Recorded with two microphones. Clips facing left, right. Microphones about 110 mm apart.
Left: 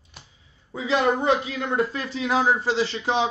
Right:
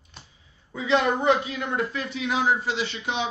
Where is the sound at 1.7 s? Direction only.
35° left (ahead or behind).